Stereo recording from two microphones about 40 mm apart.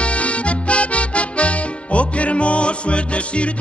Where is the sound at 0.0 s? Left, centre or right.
Left.